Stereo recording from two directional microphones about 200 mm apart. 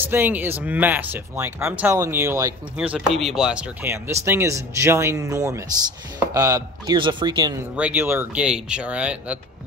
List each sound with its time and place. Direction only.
0.0 s speech: 10° right (ahead or behind)
7.7 s speech: 10° right (ahead or behind)